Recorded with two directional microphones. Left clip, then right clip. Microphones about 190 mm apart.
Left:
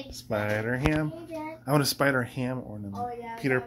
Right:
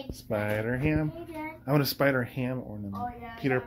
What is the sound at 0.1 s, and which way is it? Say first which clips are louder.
Speech: left 1 dB; centre (ahead or behind).